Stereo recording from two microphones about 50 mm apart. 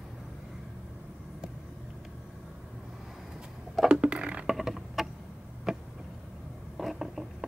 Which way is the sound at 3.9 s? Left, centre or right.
Right.